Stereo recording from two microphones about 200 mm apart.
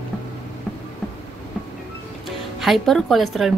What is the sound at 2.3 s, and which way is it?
Speech, centre (ahead or behind).